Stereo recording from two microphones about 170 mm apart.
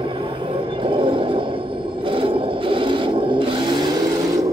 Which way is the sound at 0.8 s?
30° right (ahead or behind).